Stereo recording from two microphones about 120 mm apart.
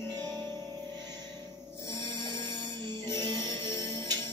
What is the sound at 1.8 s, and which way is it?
Music, 35° right (ahead or behind).